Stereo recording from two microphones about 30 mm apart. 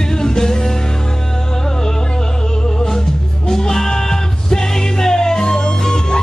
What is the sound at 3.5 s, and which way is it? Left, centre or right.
Music, left.